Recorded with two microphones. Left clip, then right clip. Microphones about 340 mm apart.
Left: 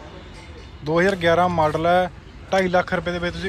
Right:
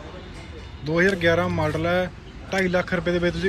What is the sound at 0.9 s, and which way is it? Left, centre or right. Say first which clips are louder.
A man's voice: left 2 dB; centre.